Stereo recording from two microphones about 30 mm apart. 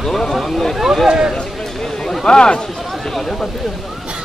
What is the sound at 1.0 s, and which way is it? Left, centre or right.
Speech, right.